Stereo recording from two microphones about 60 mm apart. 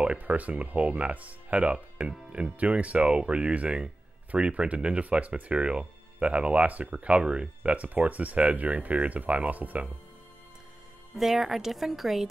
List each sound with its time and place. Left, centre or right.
0.0 s speech: centre
11.1 s speech: centre